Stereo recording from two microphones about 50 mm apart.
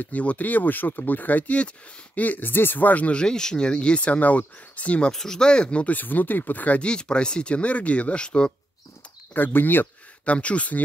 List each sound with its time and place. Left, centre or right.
0.0 s speech: left
5.1 s speech: centre
5.9 s speech: left
6.8 s speech: centre
9.3 s speech: left
10.2 s speech: left